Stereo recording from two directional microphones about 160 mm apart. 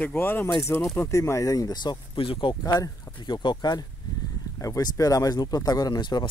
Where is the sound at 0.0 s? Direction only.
15° left (ahead or behind).